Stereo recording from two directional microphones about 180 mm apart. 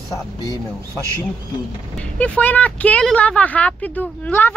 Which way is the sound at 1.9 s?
5° left (ahead or behind).